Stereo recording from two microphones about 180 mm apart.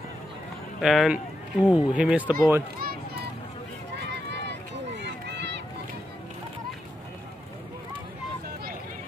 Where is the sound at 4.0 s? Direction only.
75° right (ahead or behind).